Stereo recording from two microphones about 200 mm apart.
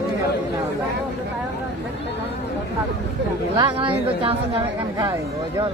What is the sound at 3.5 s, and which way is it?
Chatter, 25° right (ahead or behind).